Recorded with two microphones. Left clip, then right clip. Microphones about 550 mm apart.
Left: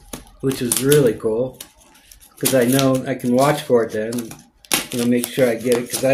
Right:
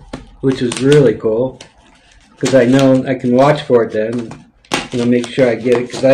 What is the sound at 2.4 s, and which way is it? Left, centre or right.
Speech, left.